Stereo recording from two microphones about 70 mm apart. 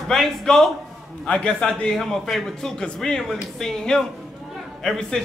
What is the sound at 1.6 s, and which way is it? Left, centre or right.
A man's voice, centre.